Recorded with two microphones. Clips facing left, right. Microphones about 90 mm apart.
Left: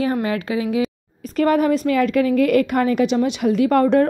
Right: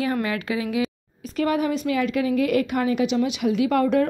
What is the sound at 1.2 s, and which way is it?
A woman's voice, 45° left (ahead or behind).